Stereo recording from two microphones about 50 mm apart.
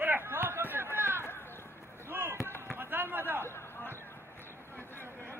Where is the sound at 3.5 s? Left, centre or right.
Left.